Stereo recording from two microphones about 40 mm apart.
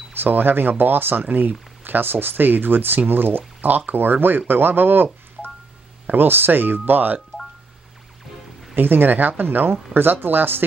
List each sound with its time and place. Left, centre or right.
0.2 s speech: right
8.7 s speech: right